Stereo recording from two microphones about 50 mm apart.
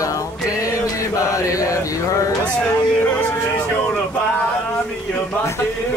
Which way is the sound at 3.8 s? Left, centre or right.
Centre.